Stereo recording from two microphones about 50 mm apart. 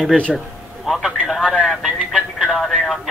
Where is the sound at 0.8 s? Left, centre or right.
Centre.